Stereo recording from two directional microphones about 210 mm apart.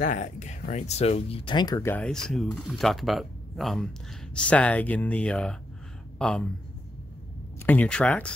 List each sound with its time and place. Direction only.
0.0 s speech: 35° left (ahead or behind); by 6.5 s 5° left (ahead or behind)
7.5 s speech: 10° left (ahead or behind)